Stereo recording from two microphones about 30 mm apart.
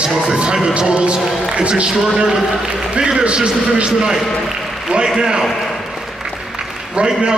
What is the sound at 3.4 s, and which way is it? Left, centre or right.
Speech, right.